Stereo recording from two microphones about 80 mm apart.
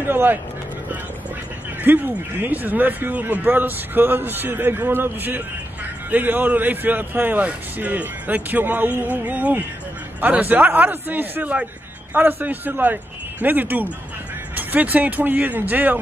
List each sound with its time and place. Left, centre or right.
0.0 s speech: right
1.8 s speech: right